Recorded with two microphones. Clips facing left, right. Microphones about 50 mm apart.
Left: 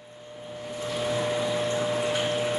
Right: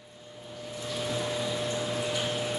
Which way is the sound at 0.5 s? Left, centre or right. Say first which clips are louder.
Left 4 dB; left.